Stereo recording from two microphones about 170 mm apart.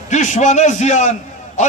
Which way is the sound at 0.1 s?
45° left (ahead or behind).